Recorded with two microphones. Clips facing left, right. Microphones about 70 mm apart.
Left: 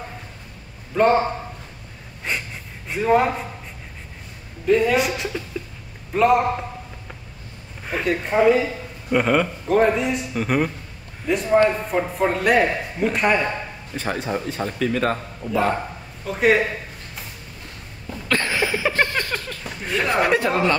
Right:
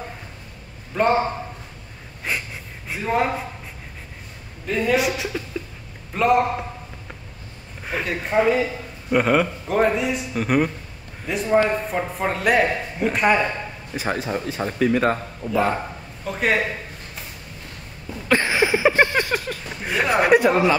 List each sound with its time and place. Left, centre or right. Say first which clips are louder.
2.3 s breathing: even; centre
2.9 s speech: left 4 dB; centre
4.6 s a man's voice: left 3 dB; centre
7.8 s a man's voice: left 3 dB; centre
18.3 s a sound: right 3 dB; centre
19.8 s speech: right 1 dB; centre